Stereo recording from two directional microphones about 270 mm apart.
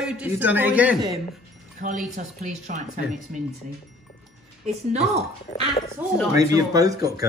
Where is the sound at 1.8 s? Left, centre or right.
Right.